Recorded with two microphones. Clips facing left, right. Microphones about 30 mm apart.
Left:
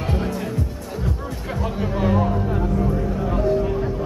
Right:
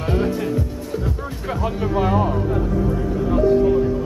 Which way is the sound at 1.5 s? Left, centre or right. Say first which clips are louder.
Right 4 dB; centre.